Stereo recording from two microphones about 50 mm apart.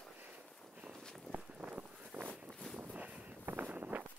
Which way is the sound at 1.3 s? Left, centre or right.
Right.